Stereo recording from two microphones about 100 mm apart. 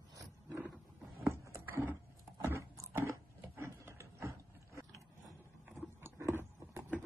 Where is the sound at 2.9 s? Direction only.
30° right (ahead or behind).